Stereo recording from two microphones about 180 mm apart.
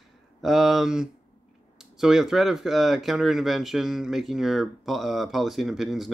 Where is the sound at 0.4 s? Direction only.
Centre (ahead or behind).